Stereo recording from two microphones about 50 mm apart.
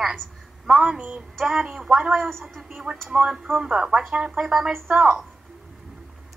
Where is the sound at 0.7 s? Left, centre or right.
Centre.